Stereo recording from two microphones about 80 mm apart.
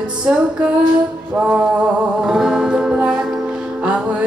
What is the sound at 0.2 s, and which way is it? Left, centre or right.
Music, centre.